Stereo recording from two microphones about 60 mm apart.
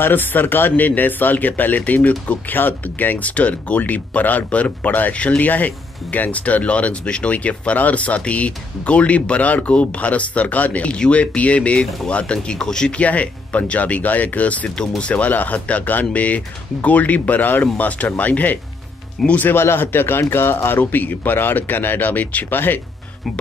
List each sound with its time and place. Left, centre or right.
0.0 s speech: left
19.5 s speech: left
20.8 s speech: left